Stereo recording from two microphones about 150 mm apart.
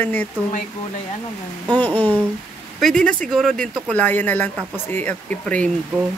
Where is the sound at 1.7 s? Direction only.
10° left (ahead or behind).